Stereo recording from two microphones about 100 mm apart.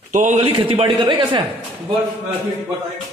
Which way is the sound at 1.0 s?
50° right (ahead or behind).